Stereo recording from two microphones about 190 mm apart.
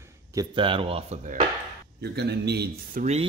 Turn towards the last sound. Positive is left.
turn(degrees=-60)  # may be behind; listen again after turning